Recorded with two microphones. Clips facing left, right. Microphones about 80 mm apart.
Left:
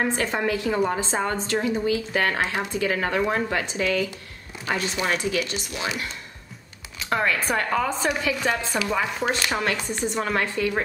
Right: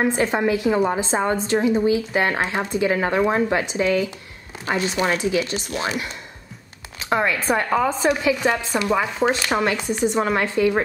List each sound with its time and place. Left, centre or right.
0.0 s speech: right
7.1 s speech: centre